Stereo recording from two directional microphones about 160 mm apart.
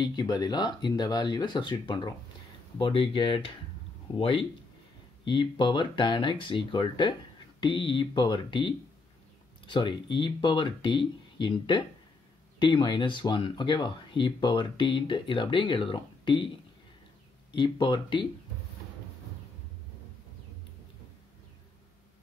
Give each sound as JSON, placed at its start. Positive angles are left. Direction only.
{"t": 0.0, "sound": "speech", "side_deg": 25}
{"t": 17.6, "sound": "speech", "side_deg": 30}